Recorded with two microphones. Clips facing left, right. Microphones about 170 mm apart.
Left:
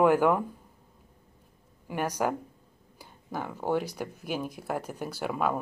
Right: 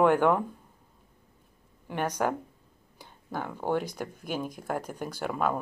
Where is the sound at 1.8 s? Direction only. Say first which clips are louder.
Even; 10° left (ahead or behind).